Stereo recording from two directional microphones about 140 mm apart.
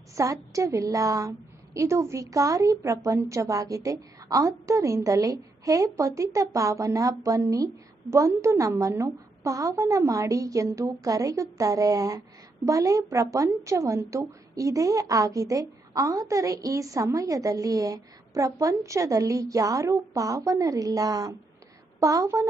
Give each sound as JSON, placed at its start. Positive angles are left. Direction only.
{"t": 0.1, "sound": "a woman's voice", "side_deg": -25}